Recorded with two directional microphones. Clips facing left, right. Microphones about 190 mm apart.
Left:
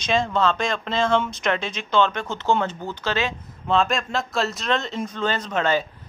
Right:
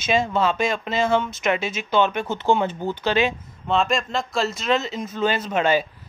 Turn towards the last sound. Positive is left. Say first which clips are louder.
# right 2 dB
turn(degrees=-10)  # may be behind; listen again after turning